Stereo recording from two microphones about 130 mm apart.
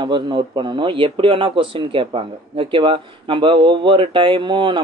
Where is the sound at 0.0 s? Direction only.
35° right (ahead or behind).